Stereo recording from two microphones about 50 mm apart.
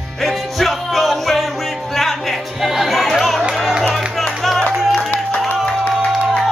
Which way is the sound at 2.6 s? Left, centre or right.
Centre.